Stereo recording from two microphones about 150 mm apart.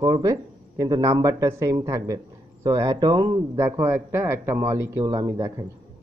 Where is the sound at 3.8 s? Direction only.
15° right (ahead or behind).